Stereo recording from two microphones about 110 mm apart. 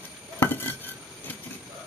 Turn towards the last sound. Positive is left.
turn(degrees=20)  # may be behind; listen again after turning